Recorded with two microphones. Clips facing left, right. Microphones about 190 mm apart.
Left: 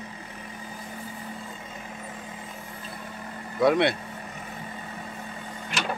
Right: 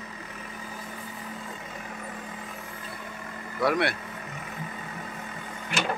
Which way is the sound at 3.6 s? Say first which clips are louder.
Left 4 dB; 20° left (ahead or behind).